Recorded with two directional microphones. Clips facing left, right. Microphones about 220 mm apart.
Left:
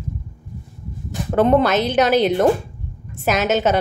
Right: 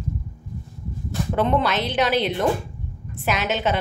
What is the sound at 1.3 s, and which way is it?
A woman's voice, 45° left (ahead or behind).